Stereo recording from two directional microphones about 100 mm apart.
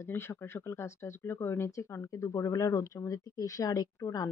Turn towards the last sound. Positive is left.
turn(degrees=35)  # may be behind; listen again after turning